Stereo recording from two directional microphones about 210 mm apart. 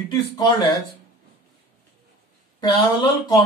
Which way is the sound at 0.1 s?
20° left (ahead or behind).